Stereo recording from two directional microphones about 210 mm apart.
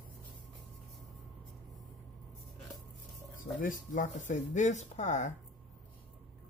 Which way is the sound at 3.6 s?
40° left (ahead or behind).